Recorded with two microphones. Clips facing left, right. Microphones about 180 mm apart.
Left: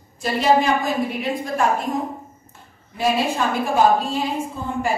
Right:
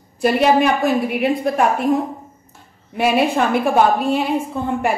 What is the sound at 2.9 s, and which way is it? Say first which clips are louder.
A woman's voice: right 4 dB; 60° right (ahead or behind).